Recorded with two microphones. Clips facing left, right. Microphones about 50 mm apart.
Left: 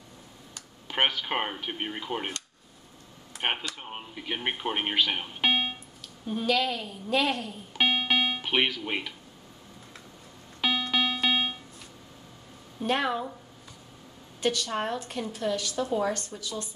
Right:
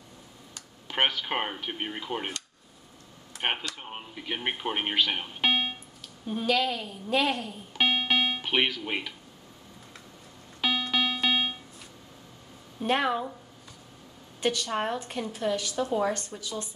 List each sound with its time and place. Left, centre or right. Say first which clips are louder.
0.6 s a woman's voice: even; centre
7.7 s music: even; centre
10.6 s music: even; centre
12.8 s a woman's voice: right 1 dB; centre
14.4 s a woman's voice: even; centre